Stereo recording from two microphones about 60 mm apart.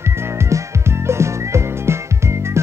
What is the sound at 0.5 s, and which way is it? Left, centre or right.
Music, right.